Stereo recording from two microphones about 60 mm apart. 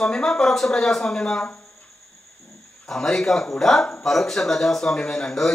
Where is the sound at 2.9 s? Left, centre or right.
Centre.